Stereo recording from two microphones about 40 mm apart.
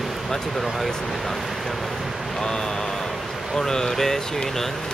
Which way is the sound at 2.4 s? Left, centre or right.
Centre.